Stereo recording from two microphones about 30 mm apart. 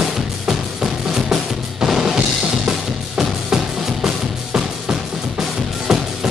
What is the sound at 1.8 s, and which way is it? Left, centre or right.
Drum kit, centre.